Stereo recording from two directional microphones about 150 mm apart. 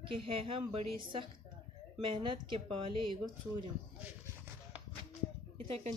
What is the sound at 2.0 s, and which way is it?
A woman's voice, 30° right (ahead or behind).